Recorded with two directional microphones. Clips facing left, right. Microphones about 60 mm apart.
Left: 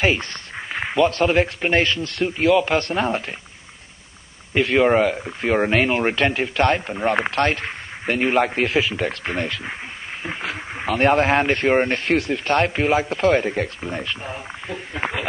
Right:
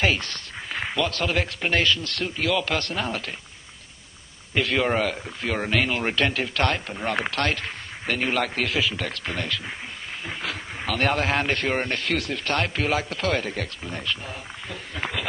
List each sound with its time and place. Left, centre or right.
0.0 s speech: left
4.6 s speech: left